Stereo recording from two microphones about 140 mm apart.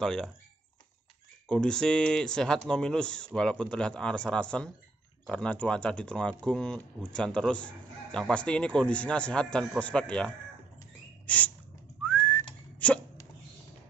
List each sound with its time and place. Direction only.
0.0 s speech: 5° left (ahead or behind)
1.5 s speech: 5° left (ahead or behind)
11.2 s a sound: 10° left (ahead or behind)
12.0 s whistling: 10° left (ahead or behind)